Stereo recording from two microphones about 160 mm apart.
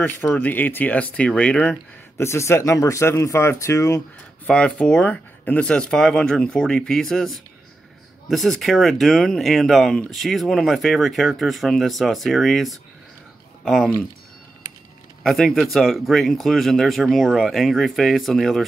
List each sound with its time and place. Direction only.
0.2 s speech: 15° left (ahead or behind)
4.5 s speech: 5° left (ahead or behind)
15.2 s speech: centre (ahead or behind)